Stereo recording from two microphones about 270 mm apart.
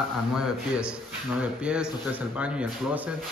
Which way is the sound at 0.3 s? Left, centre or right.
Centre.